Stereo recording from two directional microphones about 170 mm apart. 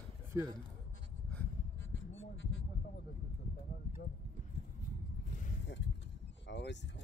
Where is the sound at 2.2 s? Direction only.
90° left.